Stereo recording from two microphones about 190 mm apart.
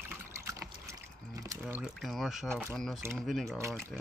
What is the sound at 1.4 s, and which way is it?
Pour, 15° right (ahead or behind).